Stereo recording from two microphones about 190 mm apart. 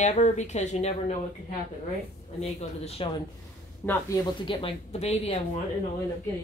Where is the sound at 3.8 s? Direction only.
15° left (ahead or behind); by 5.4 s 35° left (ahead or behind).